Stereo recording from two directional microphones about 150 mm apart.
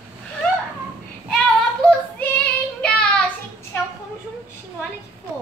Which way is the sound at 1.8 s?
10° left (ahead or behind).